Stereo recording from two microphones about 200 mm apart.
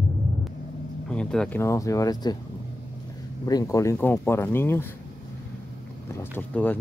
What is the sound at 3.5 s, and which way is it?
Speech, 15° left (ahead or behind).